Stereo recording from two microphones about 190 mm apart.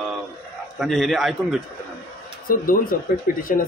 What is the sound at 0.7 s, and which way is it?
Speech, centre (ahead or behind).